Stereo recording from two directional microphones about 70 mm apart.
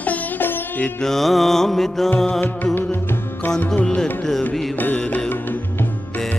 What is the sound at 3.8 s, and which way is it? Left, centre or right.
Music, centre.